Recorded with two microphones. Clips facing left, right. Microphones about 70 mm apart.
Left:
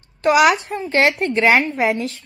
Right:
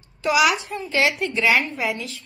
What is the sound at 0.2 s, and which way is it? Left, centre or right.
Speech, left.